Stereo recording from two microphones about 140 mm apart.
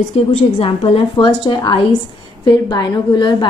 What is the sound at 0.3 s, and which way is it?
A woman's voice, 40° left (ahead or behind).